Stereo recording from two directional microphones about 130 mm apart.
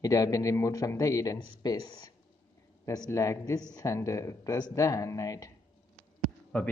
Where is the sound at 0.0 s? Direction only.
25° left (ahead or behind).